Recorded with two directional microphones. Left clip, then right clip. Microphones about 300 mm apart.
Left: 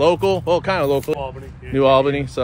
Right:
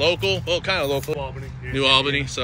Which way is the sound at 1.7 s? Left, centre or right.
Centre.